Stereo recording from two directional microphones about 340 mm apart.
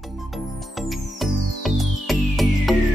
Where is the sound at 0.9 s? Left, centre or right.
Centre.